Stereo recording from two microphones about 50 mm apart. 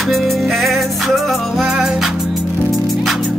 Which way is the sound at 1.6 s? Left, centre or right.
Centre.